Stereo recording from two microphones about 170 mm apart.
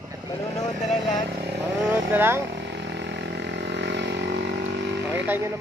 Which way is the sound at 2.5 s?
90° right.